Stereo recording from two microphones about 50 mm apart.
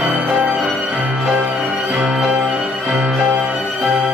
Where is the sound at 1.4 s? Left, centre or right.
Right.